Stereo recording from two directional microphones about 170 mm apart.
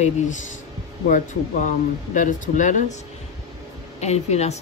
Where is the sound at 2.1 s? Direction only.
50° left (ahead or behind).